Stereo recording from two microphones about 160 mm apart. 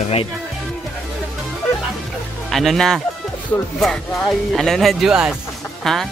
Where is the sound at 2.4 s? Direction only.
Centre (ahead or behind).